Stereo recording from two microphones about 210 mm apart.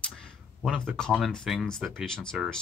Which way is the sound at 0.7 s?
Centre (ahead or behind).